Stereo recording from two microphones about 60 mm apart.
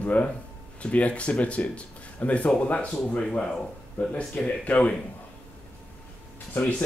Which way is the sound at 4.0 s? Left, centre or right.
Left.